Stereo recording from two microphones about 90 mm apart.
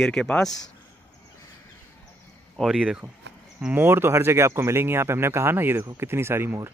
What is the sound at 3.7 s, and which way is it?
Speech, 25° right (ahead or behind).